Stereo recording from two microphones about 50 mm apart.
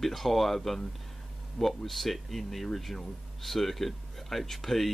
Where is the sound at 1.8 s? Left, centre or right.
Centre.